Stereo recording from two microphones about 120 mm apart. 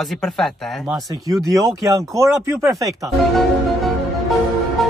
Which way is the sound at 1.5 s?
25° right (ahead or behind).